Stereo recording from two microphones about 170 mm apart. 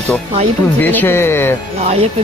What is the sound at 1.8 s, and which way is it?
Speech, 35° right (ahead or behind).